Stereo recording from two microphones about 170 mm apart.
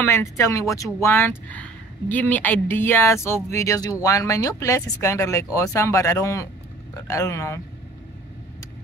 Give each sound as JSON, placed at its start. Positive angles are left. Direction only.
{"t": 0.0, "sound": "speech", "side_deg": 15}